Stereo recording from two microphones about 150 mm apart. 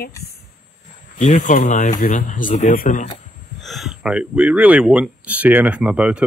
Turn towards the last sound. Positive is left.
turn(degrees=-5)  # may be behind; listen again after turning